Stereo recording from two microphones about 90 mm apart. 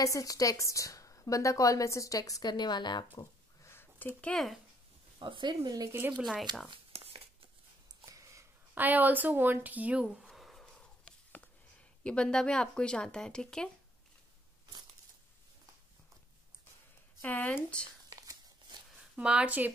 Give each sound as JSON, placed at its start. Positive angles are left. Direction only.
{"t": 0.0, "sound": "a woman's voice", "side_deg": 40}
{"t": 2.5, "sound": "speech", "side_deg": 55}
{"t": 3.6, "sound": "a sound", "side_deg": 25}
{"t": 4.2, "sound": "speech", "side_deg": 5}
{"t": 5.2, "sound": "speech", "side_deg": -60}
{"t": 5.9, "sound": "speech", "side_deg": -25}
{"t": 6.7, "sound": "shuffling cards", "side_deg": -90}
{"t": 8.0, "sound": "a sound", "side_deg": -35}
{"t": 8.7, "sound": "a sound", "side_deg": -20}
{"t": 12.0, "sound": "speech", "side_deg": 10}
{"t": 17.2, "sound": "speech", "side_deg": 20}
{"t": 18.1, "sound": "crumpling", "side_deg": -45}
{"t": 19.1, "sound": "speech", "side_deg": -10}